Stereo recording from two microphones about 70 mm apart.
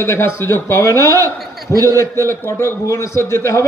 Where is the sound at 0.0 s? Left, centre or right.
Left.